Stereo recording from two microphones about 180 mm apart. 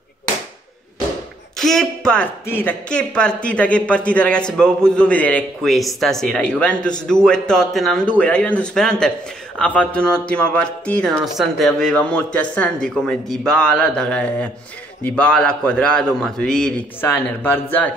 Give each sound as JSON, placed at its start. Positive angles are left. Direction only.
{"t": 1.6, "sound": "speech", "side_deg": 0}